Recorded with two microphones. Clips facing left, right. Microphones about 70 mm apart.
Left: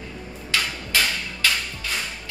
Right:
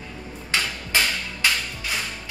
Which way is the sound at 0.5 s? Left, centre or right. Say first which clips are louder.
Even; right.